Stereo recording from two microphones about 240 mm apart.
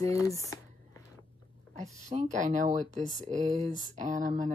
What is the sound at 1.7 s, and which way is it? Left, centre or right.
Speech, right.